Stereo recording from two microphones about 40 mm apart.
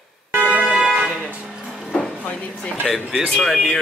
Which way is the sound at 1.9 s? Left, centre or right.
Left.